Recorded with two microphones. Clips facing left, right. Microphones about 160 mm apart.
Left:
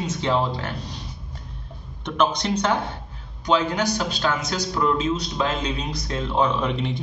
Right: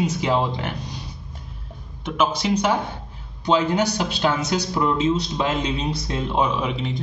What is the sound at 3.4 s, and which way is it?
A man's voice, 25° right (ahead or behind).